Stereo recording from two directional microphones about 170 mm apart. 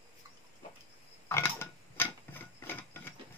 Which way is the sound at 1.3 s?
15° left (ahead or behind).